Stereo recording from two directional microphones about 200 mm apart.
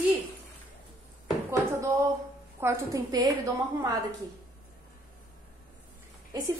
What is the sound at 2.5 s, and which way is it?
A woman's voice, 15° right (ahead or behind).